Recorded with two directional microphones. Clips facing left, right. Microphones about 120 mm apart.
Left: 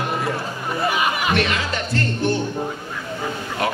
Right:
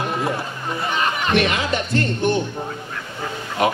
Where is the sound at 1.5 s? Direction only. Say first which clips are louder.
Right 3 dB; 20° right (ahead or behind).